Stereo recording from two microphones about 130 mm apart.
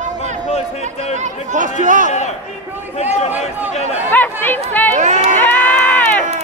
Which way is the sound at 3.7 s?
60° left (ahead or behind).